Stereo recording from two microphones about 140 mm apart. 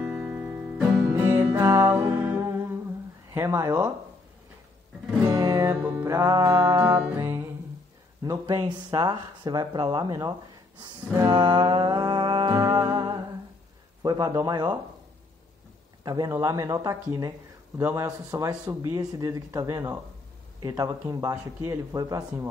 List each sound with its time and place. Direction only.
0.0 s music: 5° right (ahead or behind)
3.3 s speech: 20° right (ahead or behind)
5.2 s music: 25° right (ahead or behind)
8.2 s speech: 25° right (ahead or behind)
11.2 s music: 30° right (ahead or behind)
14.0 s speech: 25° right (ahead or behind)
16.0 s a man's voice: 30° right (ahead or behind)